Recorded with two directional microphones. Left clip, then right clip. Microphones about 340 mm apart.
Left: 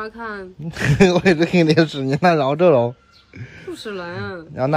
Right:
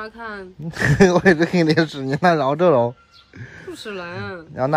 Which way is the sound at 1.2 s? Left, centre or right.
Right.